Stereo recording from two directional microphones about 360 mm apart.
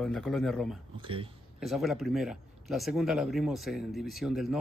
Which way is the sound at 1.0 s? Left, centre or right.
Centre.